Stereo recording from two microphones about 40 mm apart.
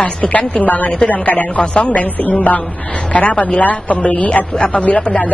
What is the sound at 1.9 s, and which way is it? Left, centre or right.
A woman's voice, left.